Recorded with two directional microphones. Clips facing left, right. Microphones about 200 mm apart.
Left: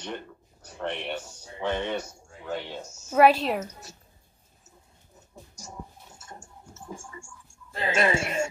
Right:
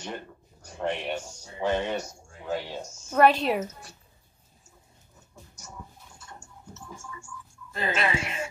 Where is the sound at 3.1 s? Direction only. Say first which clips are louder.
Left 1 dB; 5° left (ahead or behind).